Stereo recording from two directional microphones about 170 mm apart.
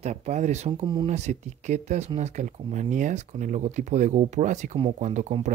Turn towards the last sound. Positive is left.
turn(degrees=-45)  # may be behind; listen again after turning